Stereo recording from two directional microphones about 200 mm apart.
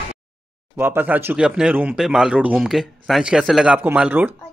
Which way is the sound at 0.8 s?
10° right (ahead or behind).